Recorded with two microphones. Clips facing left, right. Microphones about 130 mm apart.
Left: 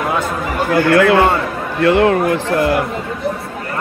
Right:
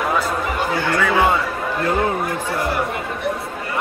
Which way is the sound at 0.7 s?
90° left.